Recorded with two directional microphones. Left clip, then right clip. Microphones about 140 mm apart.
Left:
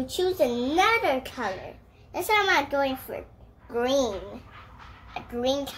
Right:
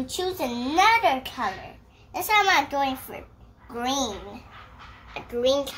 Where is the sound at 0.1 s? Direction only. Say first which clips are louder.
Left 5 dB; 20° right (ahead or behind).